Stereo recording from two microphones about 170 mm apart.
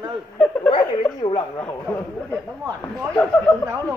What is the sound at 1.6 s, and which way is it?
Speech, 10° left (ahead or behind).